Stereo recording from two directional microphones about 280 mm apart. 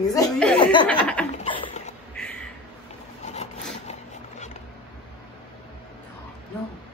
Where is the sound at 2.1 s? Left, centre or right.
Centre.